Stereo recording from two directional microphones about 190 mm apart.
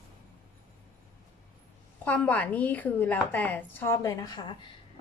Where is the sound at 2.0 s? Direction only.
10° left (ahead or behind).